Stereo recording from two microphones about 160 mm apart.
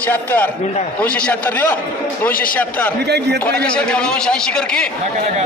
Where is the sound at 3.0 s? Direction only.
90° right.